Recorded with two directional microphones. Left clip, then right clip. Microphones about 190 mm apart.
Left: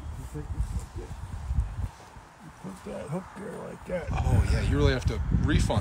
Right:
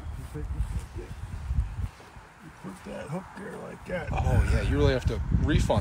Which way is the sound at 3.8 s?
Centre (ahead or behind).